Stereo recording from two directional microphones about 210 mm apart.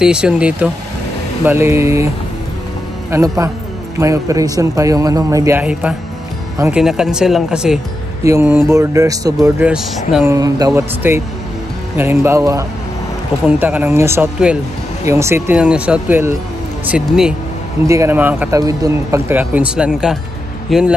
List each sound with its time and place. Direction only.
0.0 s speech: 5° right (ahead or behind)
3.1 s speech: 15° right (ahead or behind)
9.7 s speech: 5° right (ahead or behind)
10.3 s speech: 15° right (ahead or behind)
17.8 s speech: 15° right (ahead or behind)